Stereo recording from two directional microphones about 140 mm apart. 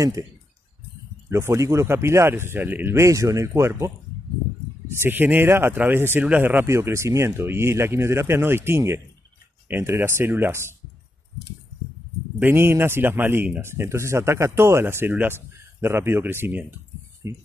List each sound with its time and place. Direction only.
1.3 s speech: 20° right (ahead or behind)
5.0 s speech: 15° right (ahead or behind)
12.4 s speech: 15° right (ahead or behind)